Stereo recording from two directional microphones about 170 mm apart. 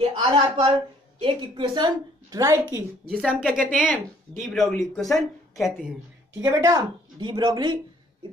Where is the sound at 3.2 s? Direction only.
5° right (ahead or behind).